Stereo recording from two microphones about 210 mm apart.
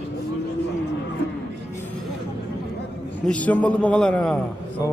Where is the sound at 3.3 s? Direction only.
5° left (ahead or behind).